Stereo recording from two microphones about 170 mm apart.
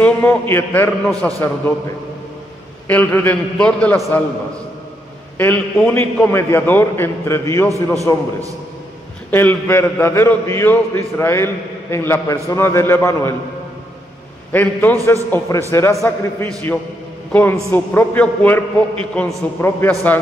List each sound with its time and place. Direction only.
0.0 s a man's voice: 10° left (ahead or behind)
2.9 s a man's voice: 10° left (ahead or behind)
5.4 s a man's voice: 10° left (ahead or behind)
9.3 s a man's voice: 10° left (ahead or behind)
14.5 s a man's voice: 10° left (ahead or behind)